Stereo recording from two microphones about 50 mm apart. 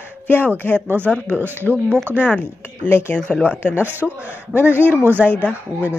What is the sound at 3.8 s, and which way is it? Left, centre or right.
Speech, right.